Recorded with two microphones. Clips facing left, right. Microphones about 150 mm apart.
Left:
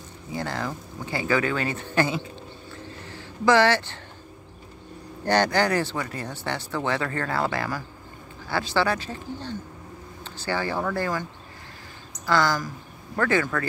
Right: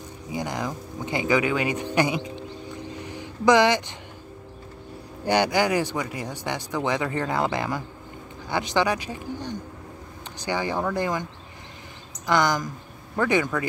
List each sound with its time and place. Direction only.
0.3 s speech: 15° right (ahead or behind)
5.2 s speech: 10° right (ahead or behind)
12.3 s speech: 20° right (ahead or behind)